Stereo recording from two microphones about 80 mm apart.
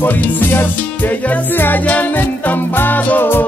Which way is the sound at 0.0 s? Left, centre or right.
Left.